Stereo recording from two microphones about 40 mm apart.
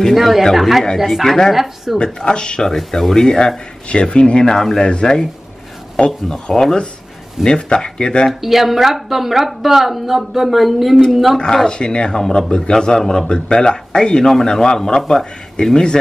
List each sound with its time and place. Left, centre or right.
0.1 s a woman's voice: centre
2.1 s speech: left
2.7 s speech: centre; by 4.5 s left
4.5 s speech: centre
6.0 s speech: left
8.3 s a woman's voice: centre
11.3 s speech: centre